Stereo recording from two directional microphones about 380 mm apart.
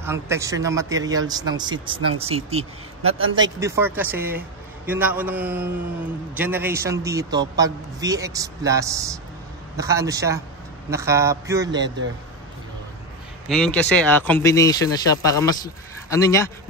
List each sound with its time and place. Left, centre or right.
0.0 s a man's voice: centre
13.5 s speech: centre